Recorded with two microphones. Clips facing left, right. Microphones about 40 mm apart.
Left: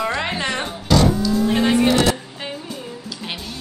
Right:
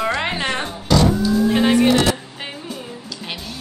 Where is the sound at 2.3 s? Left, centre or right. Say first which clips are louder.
Even; centre.